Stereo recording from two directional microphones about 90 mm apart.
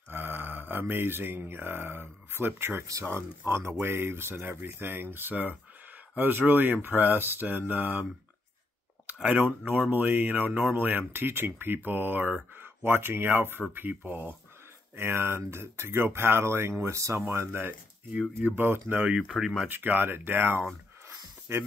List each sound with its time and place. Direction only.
0.1 s speech: 25° right (ahead or behind)
19.0 s speech: 5° right (ahead or behind)
19.7 s speech: 20° right (ahead or behind)